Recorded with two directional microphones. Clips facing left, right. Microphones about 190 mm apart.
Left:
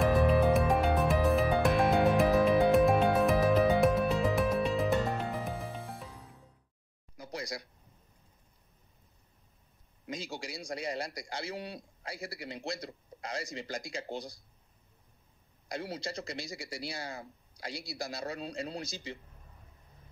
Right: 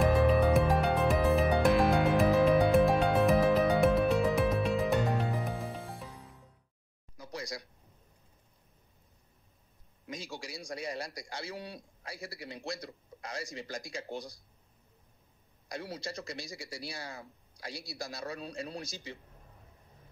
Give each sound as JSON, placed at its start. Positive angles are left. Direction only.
{"t": 0.0, "sound": "music", "side_deg": 0}
{"t": 7.2, "sound": "a sound", "side_deg": 30}
{"t": 10.0, "sound": "a man's voice", "side_deg": 25}
{"t": 15.7, "sound": "a man's voice", "side_deg": 25}